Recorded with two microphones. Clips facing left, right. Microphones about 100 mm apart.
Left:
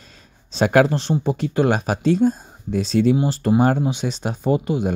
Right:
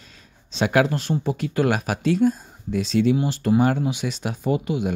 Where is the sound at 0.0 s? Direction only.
40° left (ahead or behind).